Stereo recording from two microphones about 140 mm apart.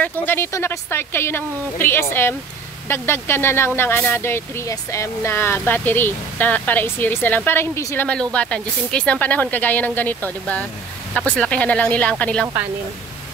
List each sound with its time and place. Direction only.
0.0 s speech: 15° left (ahead or behind)